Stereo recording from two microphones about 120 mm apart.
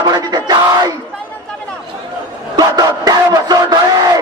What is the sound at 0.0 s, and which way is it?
Battle cry, 35° right (ahead or behind).